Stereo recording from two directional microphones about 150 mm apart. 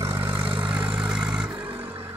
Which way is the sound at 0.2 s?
35° right (ahead or behind).